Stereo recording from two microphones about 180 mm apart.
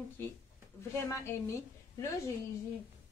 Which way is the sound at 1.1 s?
15° left (ahead or behind).